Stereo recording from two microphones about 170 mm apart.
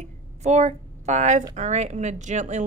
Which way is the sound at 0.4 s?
40° right (ahead or behind).